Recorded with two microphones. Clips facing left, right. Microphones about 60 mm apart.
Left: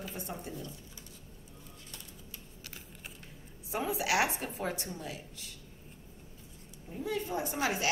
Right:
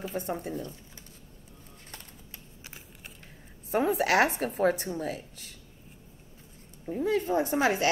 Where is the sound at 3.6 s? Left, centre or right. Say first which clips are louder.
Right 7 dB; right.